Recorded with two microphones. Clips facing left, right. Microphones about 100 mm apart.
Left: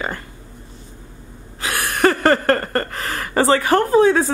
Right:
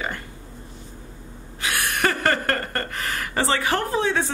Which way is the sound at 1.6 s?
35° left (ahead or behind).